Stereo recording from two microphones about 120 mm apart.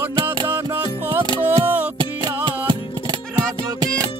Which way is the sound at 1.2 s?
40° right (ahead or behind).